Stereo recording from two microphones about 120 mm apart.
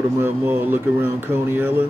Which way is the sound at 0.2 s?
15° right (ahead or behind).